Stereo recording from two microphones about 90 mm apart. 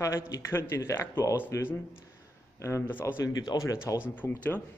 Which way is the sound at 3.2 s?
45° left (ahead or behind).